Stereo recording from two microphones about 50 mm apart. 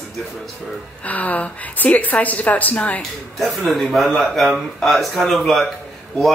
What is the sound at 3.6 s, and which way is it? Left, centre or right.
Speech, centre.